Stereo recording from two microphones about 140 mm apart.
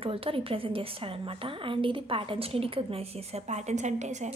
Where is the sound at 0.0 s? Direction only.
40° right (ahead or behind).